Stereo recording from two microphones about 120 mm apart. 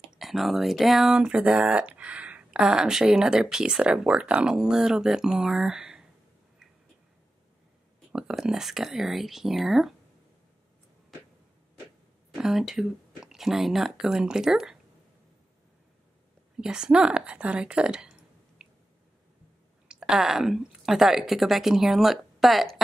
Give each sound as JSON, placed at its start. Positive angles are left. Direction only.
{"t": 0.2, "sound": "speech", "side_deg": 0}
{"t": 8.1, "sound": "speech", "side_deg": -5}
{"t": 12.4, "sound": "speech", "side_deg": -5}
{"t": 16.6, "sound": "a woman's voice", "side_deg": -5}
{"t": 18.6, "sound": "squish", "side_deg": -5}
{"t": 19.9, "sound": "speech", "side_deg": -5}